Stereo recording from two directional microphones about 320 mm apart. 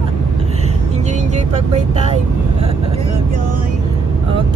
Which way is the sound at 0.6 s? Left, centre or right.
Right.